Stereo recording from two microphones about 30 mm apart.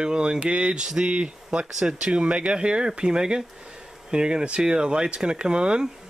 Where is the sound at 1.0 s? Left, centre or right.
Right.